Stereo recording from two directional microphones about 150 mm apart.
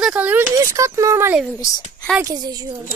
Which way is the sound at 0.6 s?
20° right (ahead or behind).